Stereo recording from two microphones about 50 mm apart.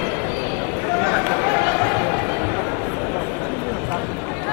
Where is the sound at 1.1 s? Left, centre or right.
Centre.